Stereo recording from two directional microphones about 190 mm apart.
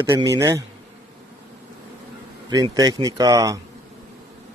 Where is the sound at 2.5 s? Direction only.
20° right (ahead or behind).